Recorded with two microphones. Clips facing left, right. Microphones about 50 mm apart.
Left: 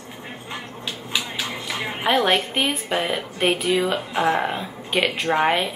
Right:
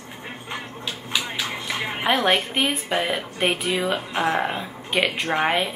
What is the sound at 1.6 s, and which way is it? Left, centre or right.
A woman's voice, centre.